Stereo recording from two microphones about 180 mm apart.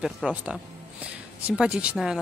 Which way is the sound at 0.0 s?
5° right (ahead or behind).